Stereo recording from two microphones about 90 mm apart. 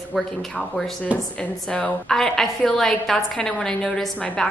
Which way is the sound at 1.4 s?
15° left (ahead or behind).